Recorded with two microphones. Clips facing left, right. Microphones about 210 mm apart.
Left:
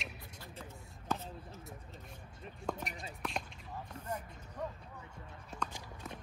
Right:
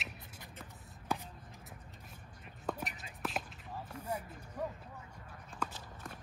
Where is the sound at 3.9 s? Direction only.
10° right (ahead or behind).